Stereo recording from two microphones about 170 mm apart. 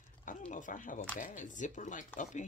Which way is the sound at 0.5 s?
50° left (ahead or behind).